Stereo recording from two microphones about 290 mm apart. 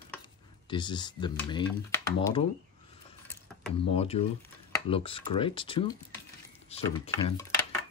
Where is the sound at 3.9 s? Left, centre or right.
Left.